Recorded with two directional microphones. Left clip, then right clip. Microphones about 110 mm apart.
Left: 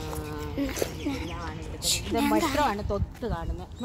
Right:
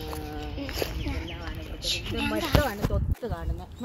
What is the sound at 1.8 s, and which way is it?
Speech, 65° left (ahead or behind).